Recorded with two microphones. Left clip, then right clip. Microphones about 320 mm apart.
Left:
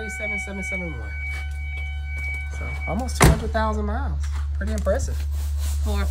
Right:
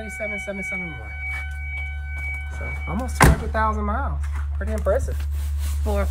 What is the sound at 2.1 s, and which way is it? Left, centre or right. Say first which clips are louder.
Music: left 1 dB; centre.